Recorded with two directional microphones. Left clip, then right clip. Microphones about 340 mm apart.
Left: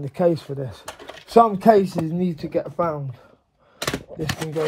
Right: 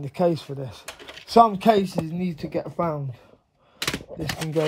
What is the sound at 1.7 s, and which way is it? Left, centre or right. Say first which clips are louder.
Speech: left 5 dB; centre.